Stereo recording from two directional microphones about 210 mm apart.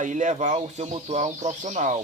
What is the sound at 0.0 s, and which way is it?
Speech, 35° right (ahead or behind).